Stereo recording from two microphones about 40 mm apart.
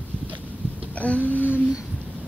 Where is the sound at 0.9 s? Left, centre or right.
Left.